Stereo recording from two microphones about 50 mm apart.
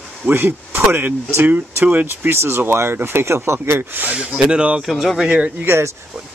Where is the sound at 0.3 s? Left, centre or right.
Right.